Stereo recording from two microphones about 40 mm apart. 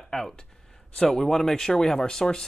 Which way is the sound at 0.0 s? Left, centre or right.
Centre.